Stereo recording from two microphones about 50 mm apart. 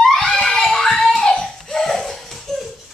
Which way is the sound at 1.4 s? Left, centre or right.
Centre.